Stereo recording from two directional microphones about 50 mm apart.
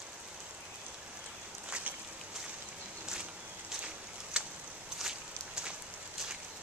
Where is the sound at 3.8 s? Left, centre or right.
Right.